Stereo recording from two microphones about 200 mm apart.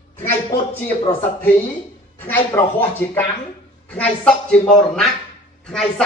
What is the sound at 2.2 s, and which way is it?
Speech, 10° left (ahead or behind).